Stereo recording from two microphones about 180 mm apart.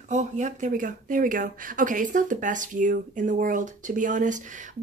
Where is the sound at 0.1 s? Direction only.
40° right (ahead or behind).